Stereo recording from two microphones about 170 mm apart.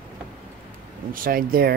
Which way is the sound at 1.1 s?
60° right (ahead or behind).